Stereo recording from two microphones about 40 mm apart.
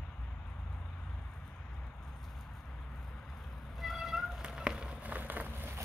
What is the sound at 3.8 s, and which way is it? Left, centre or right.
Meow, centre.